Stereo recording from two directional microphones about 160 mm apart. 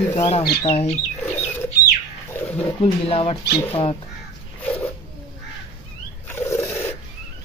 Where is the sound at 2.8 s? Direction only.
35° left (ahead or behind).